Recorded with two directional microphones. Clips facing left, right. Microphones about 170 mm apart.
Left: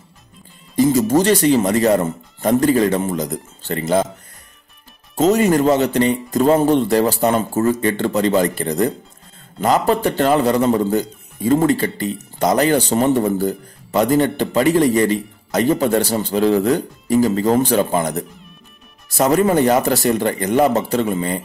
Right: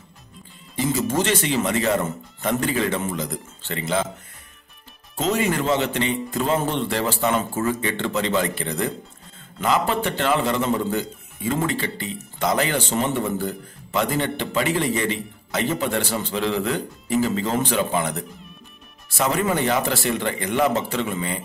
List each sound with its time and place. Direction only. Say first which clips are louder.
0.7 s a man's voice: left 8 dB; 40° left (ahead or behind)
5.1 s a man's voice: left 8 dB; 40° left (ahead or behind)